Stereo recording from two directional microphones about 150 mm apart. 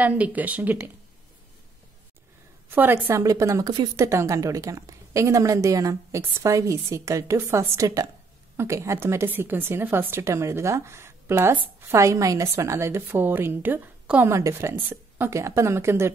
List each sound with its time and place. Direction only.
0.0 s a woman's voice: 10° right (ahead or behind)
2.7 s a woman's voice: 15° right (ahead or behind)